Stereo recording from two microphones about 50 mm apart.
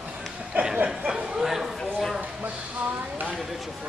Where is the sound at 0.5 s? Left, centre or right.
Right.